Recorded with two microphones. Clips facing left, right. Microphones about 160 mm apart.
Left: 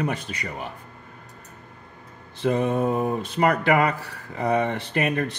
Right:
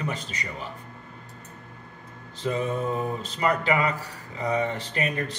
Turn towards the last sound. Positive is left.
turn(degrees=60)  # may be behind; listen again after turning